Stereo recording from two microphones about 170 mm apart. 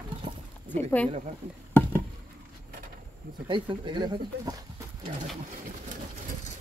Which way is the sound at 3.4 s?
30° right (ahead or behind).